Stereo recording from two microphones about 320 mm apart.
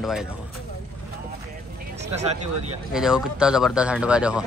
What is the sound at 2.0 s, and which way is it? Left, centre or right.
Speech, right.